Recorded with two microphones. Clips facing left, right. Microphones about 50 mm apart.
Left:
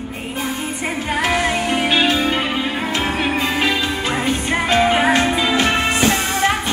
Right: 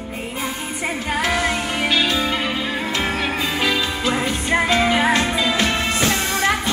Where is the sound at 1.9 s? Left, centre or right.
Left.